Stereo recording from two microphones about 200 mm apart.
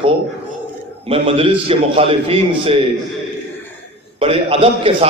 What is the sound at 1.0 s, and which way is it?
A man's voice, 30° right (ahead or behind).